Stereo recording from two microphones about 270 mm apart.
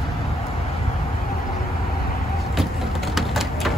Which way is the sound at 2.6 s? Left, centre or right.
Centre.